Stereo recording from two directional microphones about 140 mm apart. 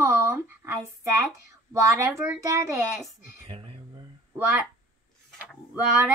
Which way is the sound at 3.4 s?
45° right (ahead or behind).